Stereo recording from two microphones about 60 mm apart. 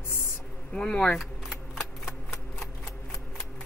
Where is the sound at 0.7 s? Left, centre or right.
Centre.